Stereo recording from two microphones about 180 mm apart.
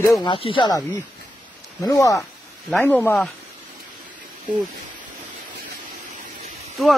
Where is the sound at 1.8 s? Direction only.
20° left (ahead or behind).